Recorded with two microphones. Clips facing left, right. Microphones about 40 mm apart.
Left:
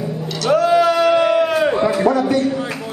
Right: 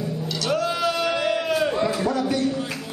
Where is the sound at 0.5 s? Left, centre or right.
Centre.